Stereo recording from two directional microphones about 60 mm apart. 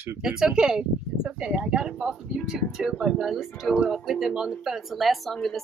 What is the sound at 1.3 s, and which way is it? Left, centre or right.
Speech, right.